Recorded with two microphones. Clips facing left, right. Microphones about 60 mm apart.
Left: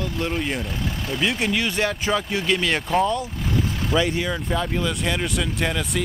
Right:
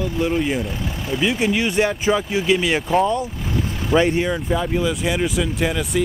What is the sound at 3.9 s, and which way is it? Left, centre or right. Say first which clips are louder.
Speech: right 6 dB; right.